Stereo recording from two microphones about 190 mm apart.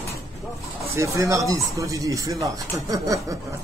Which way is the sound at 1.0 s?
15° right (ahead or behind).